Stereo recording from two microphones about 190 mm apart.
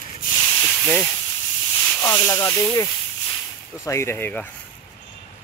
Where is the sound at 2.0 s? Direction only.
20° left (ahead or behind).